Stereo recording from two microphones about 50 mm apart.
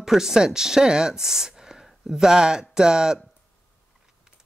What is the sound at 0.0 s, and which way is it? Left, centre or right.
Speech, centre.